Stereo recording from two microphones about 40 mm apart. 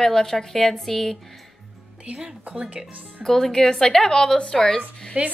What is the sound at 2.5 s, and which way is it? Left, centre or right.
Speech, right.